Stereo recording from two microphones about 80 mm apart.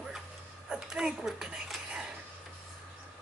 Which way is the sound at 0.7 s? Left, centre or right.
Centre.